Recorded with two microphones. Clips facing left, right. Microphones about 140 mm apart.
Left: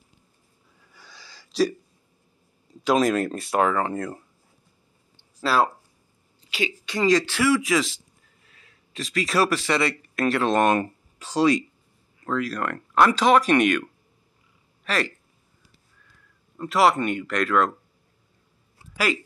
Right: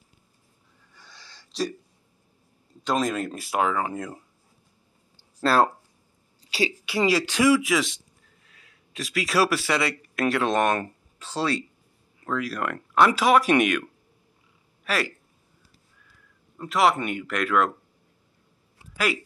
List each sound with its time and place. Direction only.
0.9 s a sound: 5° left (ahead or behind)
2.8 s speech: 5° left (ahead or behind)
5.4 s speech: 5° left (ahead or behind)
7.1 s speech: 10° right (ahead or behind)
7.6 s speech: centre (ahead or behind)
12.3 s speech: 5° right (ahead or behind)
14.9 s speech: 5° right (ahead or behind)
16.5 s speech: centre (ahead or behind)